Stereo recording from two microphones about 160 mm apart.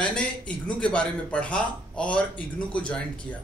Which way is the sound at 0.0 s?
5° left (ahead or behind).